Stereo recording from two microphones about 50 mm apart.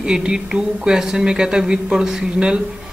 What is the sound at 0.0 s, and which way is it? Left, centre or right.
Speech, centre.